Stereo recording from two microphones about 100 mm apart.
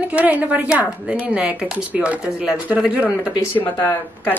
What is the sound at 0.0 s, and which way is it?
Speech, 15° right (ahead or behind).